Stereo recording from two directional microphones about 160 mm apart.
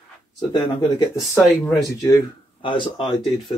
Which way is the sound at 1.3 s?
Centre (ahead or behind).